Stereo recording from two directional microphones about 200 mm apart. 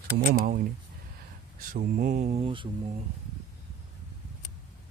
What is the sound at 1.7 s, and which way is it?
Speech, 45° right (ahead or behind).